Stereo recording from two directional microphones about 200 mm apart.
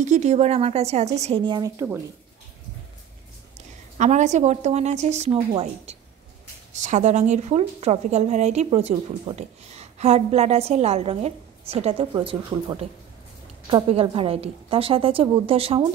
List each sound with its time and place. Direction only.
0.0 s a woman's voice: 35° right (ahead or behind); by 1.9 s 20° right (ahead or behind)
4.0 s a woman's voice: 35° right (ahead or behind)